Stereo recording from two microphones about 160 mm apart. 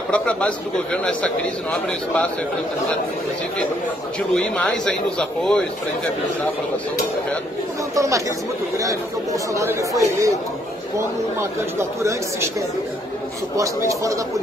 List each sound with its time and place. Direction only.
0.1 s a man's voice: 10° left (ahead or behind)
4.3 s a man's voice: 5° left (ahead or behind)
7.9 s speech: 20° right (ahead or behind)
9.5 s speech: 20° right (ahead or behind)
11.8 s speech: 15° right (ahead or behind)
13.6 s speech: 20° right (ahead or behind)